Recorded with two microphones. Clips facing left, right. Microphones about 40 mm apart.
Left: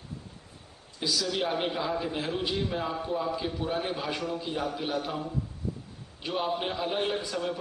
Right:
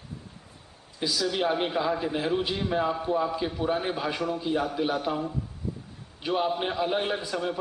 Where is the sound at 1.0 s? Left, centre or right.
Centre.